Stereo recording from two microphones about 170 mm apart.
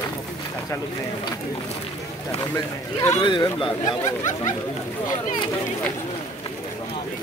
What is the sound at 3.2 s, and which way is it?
Speech, 25° left (ahead or behind).